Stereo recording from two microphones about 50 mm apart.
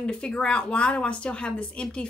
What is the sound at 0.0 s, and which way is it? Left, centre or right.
Speech, centre.